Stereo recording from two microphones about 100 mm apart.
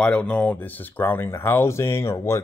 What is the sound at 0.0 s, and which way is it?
Speech, 10° left (ahead or behind).